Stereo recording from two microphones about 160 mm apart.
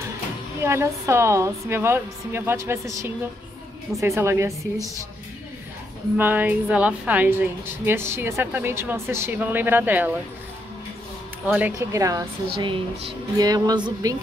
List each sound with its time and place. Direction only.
0.6 s a woman's voice: 15° right (ahead or behind)
6.1 s a woman's voice: 10° right (ahead or behind)
11.4 s a woman's voice: 10° right (ahead or behind)
12.5 s speech: 35° right (ahead or behind)
13.4 s speech: 25° right (ahead or behind)